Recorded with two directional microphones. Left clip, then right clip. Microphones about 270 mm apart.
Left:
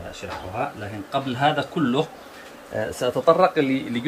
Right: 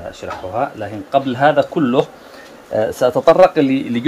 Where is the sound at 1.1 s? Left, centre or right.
Centre.